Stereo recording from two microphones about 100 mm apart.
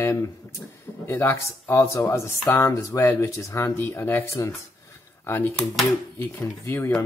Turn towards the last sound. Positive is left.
turn(degrees=20)  # may be behind; listen again after turning